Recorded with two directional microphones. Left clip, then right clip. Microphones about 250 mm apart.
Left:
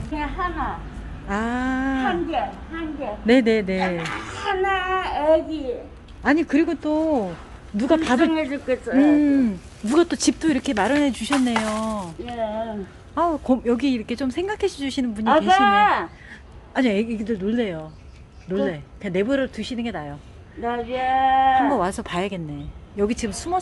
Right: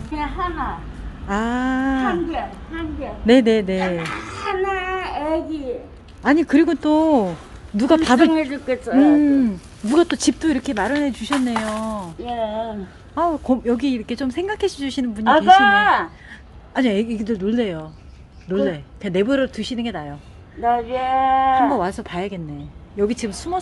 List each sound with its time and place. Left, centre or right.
0.1 s a woman's voice: right
2.0 s speech: centre
6.2 s a woman's voice: centre
7.7 s a woman's voice: centre
9.0 s speech: centre
12.3 s a woman's voice: right
13.1 s speech: centre
15.6 s a woman's voice: right
16.7 s speech: centre
20.6 s speech: centre
21.5 s speech: centre